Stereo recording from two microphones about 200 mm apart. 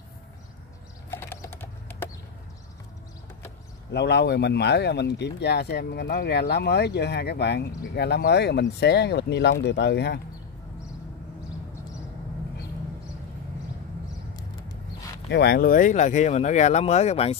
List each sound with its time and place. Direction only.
1.1 s typing: 10° left (ahead or behind)
3.9 s speech: 60° left (ahead or behind)
15.2 s speech: 55° left (ahead or behind); by 17.4 s 30° left (ahead or behind)